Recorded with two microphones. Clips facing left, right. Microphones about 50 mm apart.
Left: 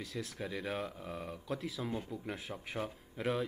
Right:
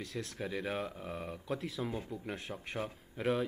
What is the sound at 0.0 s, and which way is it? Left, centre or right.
Speech, centre.